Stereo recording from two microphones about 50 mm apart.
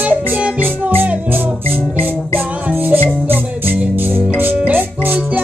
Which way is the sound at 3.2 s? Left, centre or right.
Right.